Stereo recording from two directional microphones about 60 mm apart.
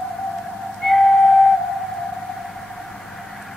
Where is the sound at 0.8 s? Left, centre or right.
Centre.